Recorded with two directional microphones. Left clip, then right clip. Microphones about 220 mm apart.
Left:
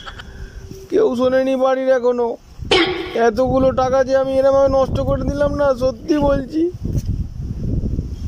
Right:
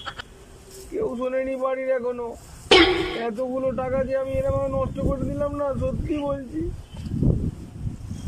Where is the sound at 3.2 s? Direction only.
30° left (ahead or behind).